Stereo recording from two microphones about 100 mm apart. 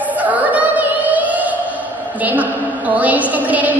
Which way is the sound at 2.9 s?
15° right (ahead or behind).